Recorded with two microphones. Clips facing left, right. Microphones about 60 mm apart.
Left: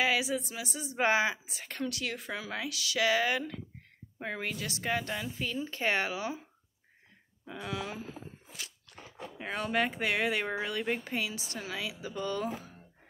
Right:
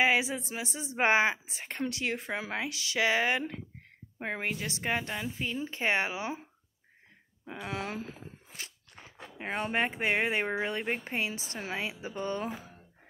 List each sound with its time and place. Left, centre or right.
0.0 s a woman's voice: right
7.4 s a woman's voice: right
9.4 s a woman's voice: right